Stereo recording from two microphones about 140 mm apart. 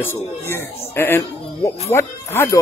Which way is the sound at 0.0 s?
15° left (ahead or behind).